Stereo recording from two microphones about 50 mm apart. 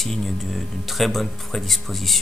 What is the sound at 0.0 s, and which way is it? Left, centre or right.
Speech, centre.